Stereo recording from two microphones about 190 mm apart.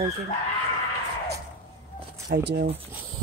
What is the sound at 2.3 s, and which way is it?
Speech, 55° right (ahead or behind).